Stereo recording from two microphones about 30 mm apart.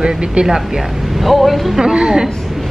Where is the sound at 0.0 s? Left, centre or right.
Right.